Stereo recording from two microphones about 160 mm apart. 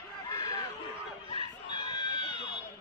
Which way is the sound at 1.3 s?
35° left (ahead or behind).